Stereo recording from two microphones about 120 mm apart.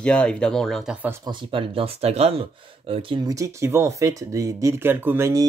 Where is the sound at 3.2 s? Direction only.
30° right (ahead or behind).